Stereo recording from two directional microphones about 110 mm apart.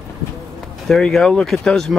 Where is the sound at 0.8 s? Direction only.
5° left (ahead or behind).